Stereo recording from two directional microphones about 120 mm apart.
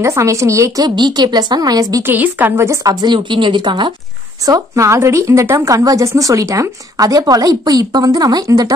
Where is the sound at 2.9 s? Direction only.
40° right (ahead or behind).